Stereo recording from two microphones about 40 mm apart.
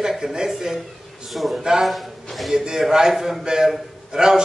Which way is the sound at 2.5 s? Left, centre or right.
Centre.